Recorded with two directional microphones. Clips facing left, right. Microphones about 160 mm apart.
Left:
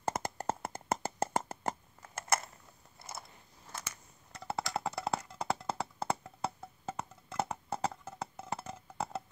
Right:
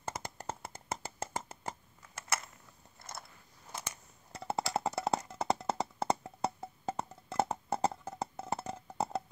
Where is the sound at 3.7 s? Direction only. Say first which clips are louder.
Right 2 dB; 15° right (ahead or behind).